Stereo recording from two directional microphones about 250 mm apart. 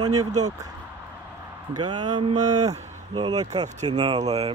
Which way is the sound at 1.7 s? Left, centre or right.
Centre.